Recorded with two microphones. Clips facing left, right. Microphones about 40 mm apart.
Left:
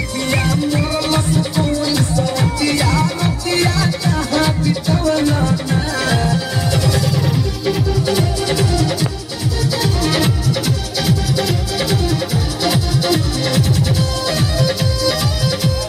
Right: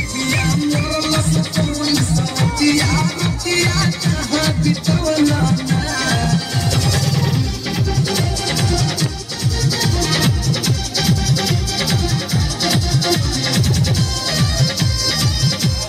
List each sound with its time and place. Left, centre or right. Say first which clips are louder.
0.3 s music: even; centre